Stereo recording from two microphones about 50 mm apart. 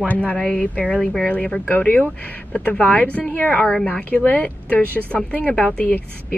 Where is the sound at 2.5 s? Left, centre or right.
Centre.